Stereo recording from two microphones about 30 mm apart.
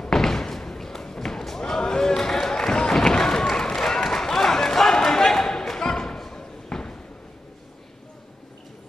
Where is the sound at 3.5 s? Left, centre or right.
Centre.